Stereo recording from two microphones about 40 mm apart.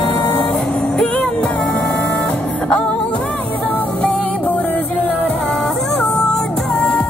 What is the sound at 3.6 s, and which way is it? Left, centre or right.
Music, left.